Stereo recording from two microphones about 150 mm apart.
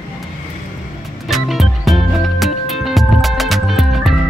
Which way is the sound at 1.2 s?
Centre (ahead or behind).